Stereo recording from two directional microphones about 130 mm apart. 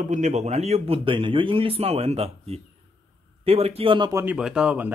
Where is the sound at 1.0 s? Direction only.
40° right (ahead or behind).